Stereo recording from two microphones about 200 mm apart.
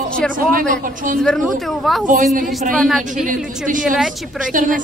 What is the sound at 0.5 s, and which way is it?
Speech, 45° right (ahead or behind).